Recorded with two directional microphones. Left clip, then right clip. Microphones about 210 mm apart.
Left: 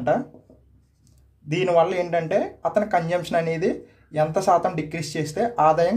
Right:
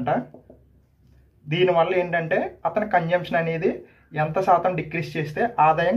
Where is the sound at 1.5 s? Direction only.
60° left (ahead or behind).